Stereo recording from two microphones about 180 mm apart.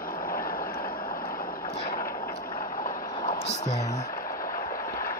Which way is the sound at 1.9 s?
55° left (ahead or behind).